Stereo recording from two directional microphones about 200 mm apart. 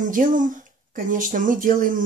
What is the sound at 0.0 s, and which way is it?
Speech, 40° right (ahead or behind).